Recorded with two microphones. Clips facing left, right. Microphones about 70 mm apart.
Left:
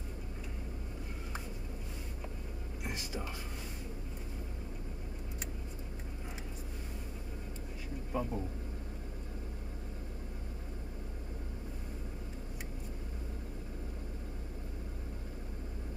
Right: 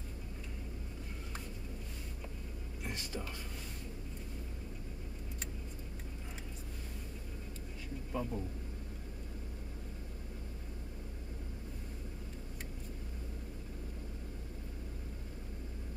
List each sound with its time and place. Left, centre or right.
2.8 s whispering: centre
8.1 s speech: centre